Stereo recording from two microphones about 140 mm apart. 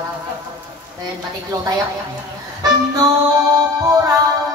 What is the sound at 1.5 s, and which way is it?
Speech, 25° right (ahead or behind).